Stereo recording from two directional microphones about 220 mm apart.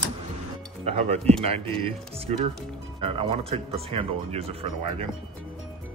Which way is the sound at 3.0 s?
25° right (ahead or behind).